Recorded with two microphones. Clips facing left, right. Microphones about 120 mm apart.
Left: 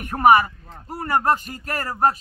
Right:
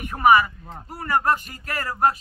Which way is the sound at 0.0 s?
45° left (ahead or behind).